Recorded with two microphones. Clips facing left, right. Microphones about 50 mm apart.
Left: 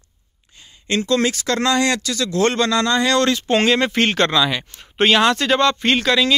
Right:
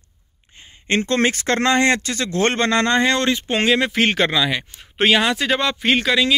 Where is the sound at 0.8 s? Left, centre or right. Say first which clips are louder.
Even; right; by 3.6 s centre.